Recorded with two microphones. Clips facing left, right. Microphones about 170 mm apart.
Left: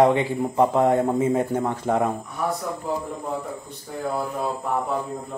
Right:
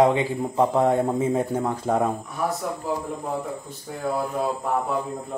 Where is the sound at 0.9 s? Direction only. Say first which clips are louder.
Left 1 dB; 5° left (ahead or behind).